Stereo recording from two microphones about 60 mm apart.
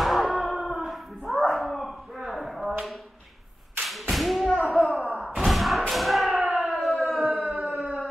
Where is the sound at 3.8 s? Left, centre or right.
Centre.